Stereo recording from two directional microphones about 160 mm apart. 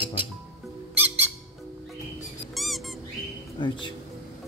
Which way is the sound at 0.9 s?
10° right (ahead or behind).